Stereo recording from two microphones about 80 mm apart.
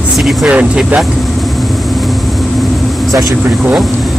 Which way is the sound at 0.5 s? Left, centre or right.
Centre.